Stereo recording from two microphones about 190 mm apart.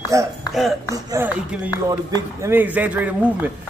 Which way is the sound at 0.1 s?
15° right (ahead or behind).